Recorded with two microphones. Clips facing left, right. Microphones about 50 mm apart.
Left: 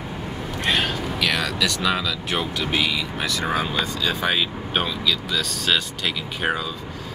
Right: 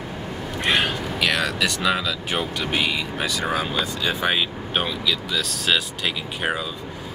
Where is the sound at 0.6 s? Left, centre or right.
Centre.